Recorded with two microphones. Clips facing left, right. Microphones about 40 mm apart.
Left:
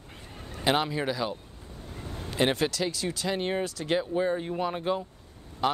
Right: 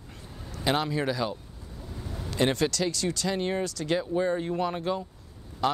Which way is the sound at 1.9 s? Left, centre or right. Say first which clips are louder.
Even; left.